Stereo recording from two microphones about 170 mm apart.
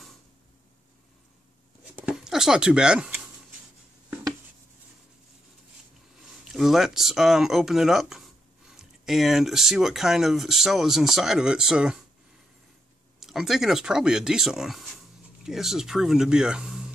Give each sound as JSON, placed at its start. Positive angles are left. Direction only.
{"t": 2.0, "sound": "a sound", "side_deg": -5}
{"t": 6.5, "sound": "speech", "side_deg": 0}
{"t": 13.2, "sound": "speech", "side_deg": 0}